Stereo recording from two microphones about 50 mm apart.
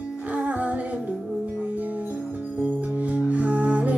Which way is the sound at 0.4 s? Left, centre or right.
Right.